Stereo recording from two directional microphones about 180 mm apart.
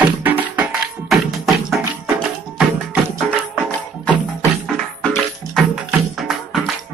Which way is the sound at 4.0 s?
10° left (ahead or behind).